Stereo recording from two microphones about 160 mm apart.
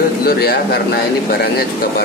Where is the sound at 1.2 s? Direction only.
80° left.